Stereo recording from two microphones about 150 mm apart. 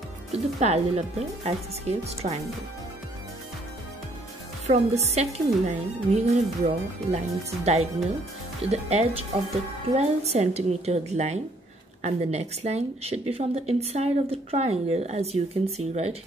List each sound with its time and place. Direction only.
0.3 s speech: 45° right (ahead or behind)
4.6 s speech: 45° right (ahead or behind)